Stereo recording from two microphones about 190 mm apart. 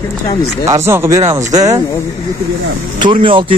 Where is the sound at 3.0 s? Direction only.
25° right (ahead or behind).